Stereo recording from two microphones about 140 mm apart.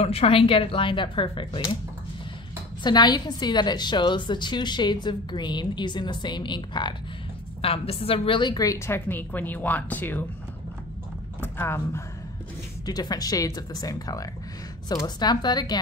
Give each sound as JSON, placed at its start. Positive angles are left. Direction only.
{"t": 0.0, "sound": "a woman's voice", "side_deg": 45}
{"t": 2.8, "sound": "a woman's voice", "side_deg": 30}
{"t": 7.6, "sound": "a woman's voice", "side_deg": 45}
{"t": 11.4, "sound": "speech", "side_deg": 15}
{"t": 12.8, "sound": "a woman's voice", "side_deg": 30}